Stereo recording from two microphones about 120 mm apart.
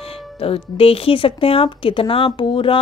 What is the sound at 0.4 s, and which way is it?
Speech, 50° left (ahead or behind).